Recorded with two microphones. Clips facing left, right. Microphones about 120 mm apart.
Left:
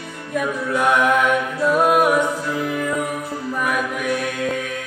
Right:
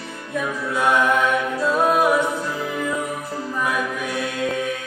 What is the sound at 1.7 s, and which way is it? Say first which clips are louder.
Music: left 2 dB; 10° left (ahead or behind).